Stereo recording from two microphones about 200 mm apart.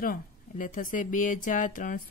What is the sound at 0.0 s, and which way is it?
A woman's voice, 45° left (ahead or behind).